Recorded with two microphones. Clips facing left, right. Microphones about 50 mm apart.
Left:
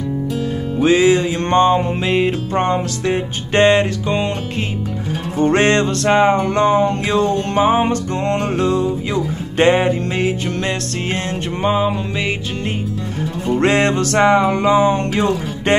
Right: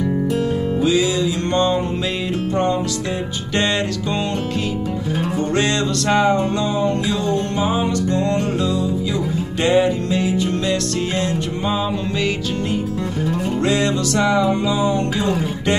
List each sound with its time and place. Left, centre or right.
0.8 s music: left
5.4 s music: left
9.6 s music: left
11.6 s music: left
13.6 s music: left